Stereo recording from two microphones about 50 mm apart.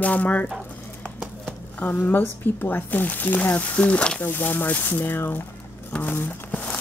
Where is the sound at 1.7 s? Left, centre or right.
Left.